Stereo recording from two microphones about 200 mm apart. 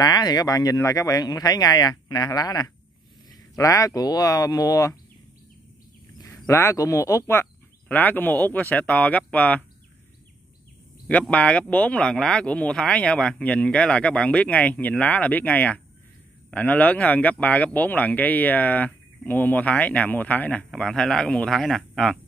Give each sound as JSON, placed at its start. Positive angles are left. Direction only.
{"t": 0.0, "sound": "speech", "side_deg": 20}
{"t": 6.1, "sound": "speech", "side_deg": 15}
{"t": 11.1, "sound": "speech", "side_deg": 5}